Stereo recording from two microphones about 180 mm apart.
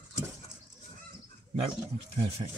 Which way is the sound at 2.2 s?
35° right (ahead or behind).